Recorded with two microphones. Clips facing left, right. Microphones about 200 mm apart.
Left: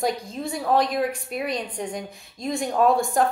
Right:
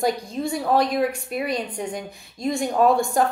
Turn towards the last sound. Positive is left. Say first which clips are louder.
# right 1 dB
turn(degrees=0)  # may be behind; listen again after turning